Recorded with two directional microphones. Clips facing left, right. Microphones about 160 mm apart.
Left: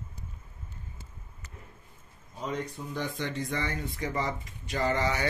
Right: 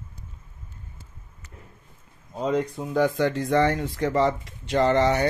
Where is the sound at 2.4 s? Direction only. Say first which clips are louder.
Right 9 dB; 90° right; by 5.2 s 65° right (ahead or behind).